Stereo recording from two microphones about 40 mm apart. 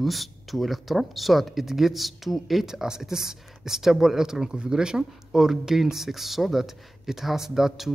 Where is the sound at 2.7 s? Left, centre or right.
Centre.